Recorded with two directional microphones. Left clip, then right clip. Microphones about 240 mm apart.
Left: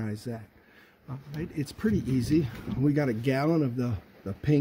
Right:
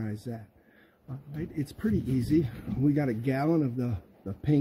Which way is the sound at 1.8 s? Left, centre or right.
Centre.